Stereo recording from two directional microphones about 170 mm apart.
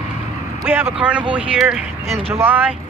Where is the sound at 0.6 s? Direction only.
15° right (ahead or behind).